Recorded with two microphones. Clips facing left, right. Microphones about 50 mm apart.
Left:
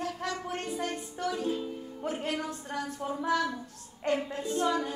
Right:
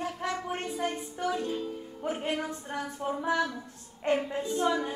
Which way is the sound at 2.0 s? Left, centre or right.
Centre.